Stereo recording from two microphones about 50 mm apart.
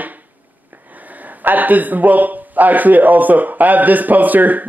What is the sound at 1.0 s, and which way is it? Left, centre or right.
Speech, right.